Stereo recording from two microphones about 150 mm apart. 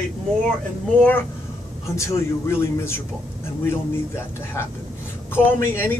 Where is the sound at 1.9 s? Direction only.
20° left (ahead or behind).